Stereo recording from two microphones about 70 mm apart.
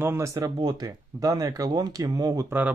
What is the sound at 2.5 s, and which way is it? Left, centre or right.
Speech, right.